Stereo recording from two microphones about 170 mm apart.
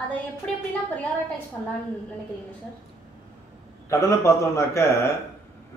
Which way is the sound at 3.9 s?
15° left (ahead or behind).